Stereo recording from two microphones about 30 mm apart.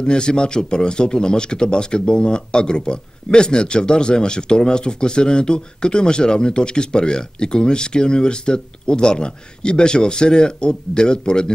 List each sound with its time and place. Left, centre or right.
0.0 s a man's voice: left